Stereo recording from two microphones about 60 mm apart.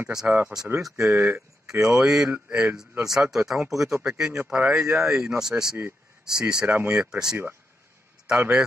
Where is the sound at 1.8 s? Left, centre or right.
Centre.